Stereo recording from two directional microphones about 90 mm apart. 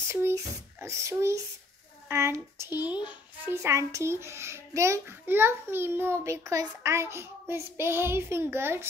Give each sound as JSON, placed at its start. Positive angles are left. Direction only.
{"t": 0.8, "sound": "a child's voice", "side_deg": -35}